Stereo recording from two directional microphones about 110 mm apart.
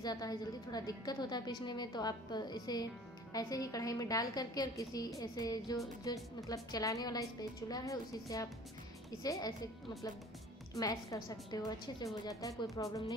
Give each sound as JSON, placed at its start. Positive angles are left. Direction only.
{"t": 0.0, "sound": "a woman's voice", "side_deg": 35}
{"t": 10.7, "sound": "a woman's voice", "side_deg": 35}